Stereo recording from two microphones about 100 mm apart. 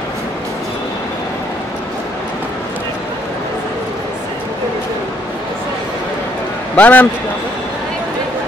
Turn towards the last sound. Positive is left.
turn(degrees=15)  # may be behind; listen again after turning